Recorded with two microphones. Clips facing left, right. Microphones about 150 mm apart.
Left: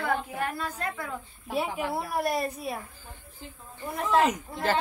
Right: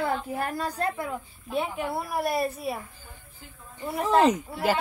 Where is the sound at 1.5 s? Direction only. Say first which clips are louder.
Even; centre (ahead or behind).